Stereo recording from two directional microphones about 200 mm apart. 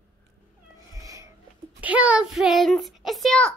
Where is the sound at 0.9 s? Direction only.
15° right (ahead or behind).